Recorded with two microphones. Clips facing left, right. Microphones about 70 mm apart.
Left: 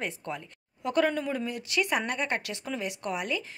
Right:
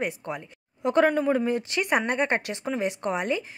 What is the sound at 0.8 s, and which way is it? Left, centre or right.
A woman's voice, right.